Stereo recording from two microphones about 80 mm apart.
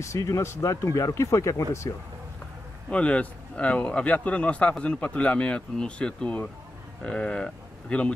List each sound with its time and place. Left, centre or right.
0.0 s speech: left
2.9 s a man's voice: centre